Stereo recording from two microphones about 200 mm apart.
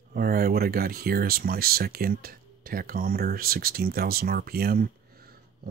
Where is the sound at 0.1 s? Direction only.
45° right (ahead or behind).